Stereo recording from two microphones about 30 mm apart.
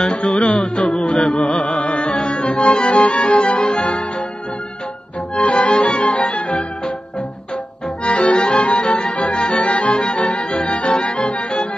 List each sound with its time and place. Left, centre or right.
0.5 s music: left
3.5 s music: left
5.3 s music: left
8.0 s music: left